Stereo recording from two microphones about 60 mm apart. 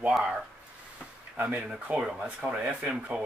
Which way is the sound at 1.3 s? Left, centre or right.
Right.